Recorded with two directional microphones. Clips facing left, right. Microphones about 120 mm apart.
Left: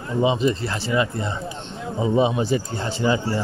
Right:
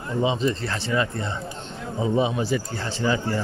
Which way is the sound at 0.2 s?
15° left (ahead or behind).